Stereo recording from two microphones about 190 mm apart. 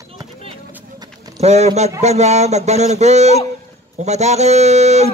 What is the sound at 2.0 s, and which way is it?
Speech, 35° right (ahead or behind).